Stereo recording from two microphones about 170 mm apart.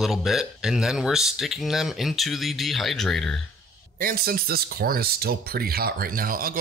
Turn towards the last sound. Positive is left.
turn(degrees=-55)  # may be behind; listen again after turning